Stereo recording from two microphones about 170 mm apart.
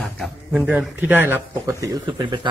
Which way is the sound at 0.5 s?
5° right (ahead or behind).